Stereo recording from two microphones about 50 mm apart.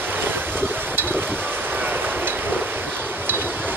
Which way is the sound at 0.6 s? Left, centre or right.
Right.